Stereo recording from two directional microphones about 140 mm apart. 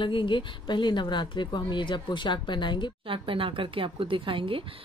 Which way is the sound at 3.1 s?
40° right (ahead or behind).